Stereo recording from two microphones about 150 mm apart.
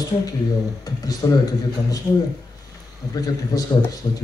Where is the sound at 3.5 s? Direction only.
25° left (ahead or behind).